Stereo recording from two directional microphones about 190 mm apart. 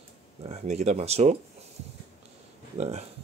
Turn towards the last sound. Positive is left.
turn(degrees=-35)  # may be behind; listen again after turning